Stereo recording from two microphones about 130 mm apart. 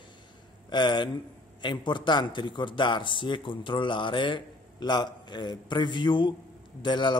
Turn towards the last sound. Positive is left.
turn(degrees=35)  # may be behind; listen again after turning